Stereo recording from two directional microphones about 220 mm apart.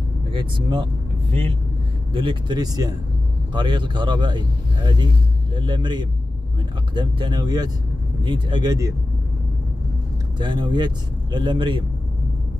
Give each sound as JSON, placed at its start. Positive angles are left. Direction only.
{"t": 0.3, "sound": "speech", "side_deg": -20}
{"t": 2.1, "sound": "speech", "side_deg": -20}
{"t": 10.4, "sound": "speech", "side_deg": -20}